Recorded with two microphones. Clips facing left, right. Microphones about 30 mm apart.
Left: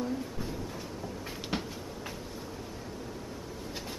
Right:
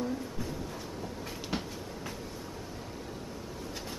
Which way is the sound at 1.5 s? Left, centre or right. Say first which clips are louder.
Left 1 dB; centre.